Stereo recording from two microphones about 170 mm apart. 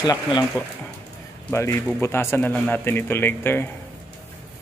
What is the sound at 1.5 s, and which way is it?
A man's voice, 15° left (ahead or behind).